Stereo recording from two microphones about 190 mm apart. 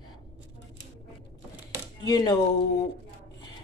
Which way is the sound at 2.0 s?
20° left (ahead or behind).